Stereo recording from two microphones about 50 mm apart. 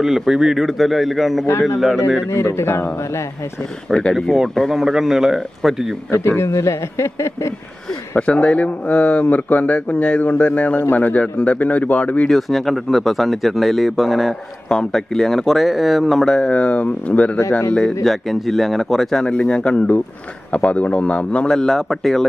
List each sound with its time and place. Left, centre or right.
0.3 s speech: centre
2.3 s a man's voice: left
4.1 s a man's voice: centre
6.1 s a man's voice: left
6.5 s speech: left
8.2 s a man's voice: left
12.3 s speech: centre
16.3 s speech: centre
17.5 s a man's voice: left
18.0 s speech: centre
19.2 s a man's voice: centre
21.5 s speech: centre